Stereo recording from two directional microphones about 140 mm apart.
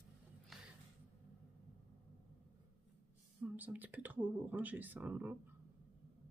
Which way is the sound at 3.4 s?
10° right (ahead or behind).